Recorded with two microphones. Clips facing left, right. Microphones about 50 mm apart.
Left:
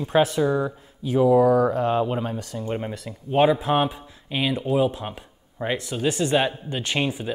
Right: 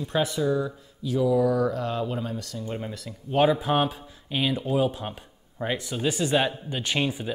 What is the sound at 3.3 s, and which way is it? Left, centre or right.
Speech, centre.